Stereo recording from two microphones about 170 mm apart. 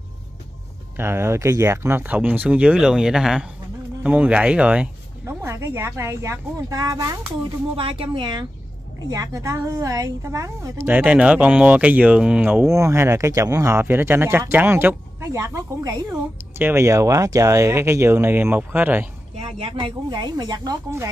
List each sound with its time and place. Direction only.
0.9 s a woman's voice: 15° right (ahead or behind)
7.7 s a woman's voice: 30° right (ahead or behind); by 19.0 s 10° right (ahead or behind)
19.3 s speech: 35° right (ahead or behind); by 21.1 s 20° right (ahead or behind)